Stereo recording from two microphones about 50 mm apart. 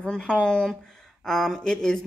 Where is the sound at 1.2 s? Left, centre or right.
Centre.